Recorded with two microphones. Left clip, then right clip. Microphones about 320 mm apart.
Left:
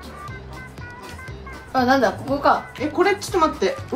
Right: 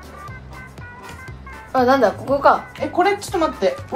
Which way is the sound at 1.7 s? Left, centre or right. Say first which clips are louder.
Right 3 dB; centre.